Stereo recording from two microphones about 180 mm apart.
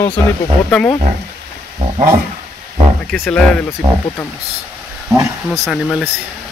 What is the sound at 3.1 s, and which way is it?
Speech, 10° left (ahead or behind).